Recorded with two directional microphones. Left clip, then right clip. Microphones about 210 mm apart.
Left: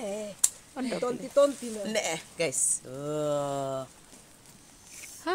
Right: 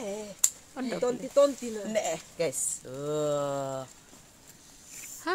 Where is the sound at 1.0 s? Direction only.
30° right (ahead or behind).